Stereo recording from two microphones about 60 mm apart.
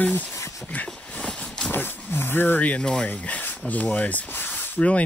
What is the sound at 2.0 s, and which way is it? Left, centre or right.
Speech, left.